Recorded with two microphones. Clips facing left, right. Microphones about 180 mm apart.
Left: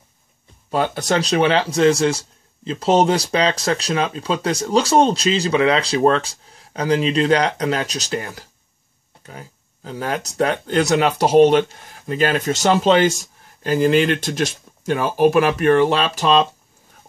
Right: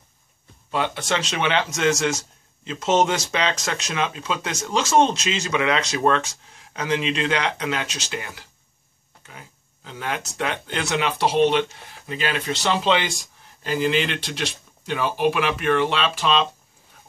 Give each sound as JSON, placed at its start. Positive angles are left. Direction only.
{"t": 0.7, "sound": "speech", "side_deg": 40}